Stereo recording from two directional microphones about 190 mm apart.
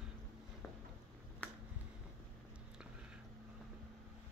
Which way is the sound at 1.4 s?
10° left (ahead or behind).